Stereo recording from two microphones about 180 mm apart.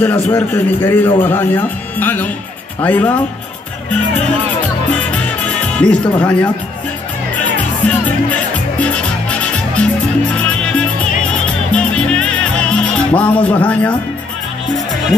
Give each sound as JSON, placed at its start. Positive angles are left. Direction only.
{"t": 0.0, "sound": "a man's voice", "side_deg": 10}
{"t": 4.9, "sound": "music", "side_deg": 5}
{"t": 7.5, "sound": "music", "side_deg": 5}